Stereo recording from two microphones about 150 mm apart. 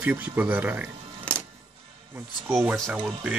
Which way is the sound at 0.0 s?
10° right (ahead or behind).